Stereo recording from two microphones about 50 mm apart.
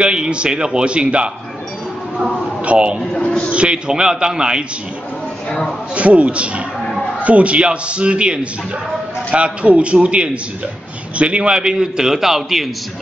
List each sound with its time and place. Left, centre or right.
0.0 s a man's voice: centre
2.6 s a man's voice: right
5.9 s a man's voice: right; by 12.6 s centre